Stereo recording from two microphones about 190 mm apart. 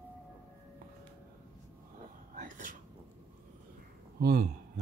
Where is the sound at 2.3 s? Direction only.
45° right (ahead or behind).